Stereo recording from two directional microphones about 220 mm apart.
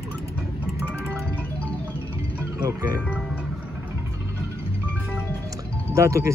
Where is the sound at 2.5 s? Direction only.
20° right (ahead or behind).